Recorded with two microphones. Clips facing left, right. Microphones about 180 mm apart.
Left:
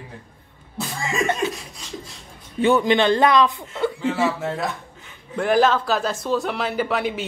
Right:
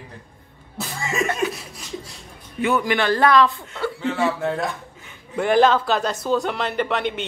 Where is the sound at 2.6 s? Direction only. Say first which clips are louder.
Left 4 dB; 25° left (ahead or behind).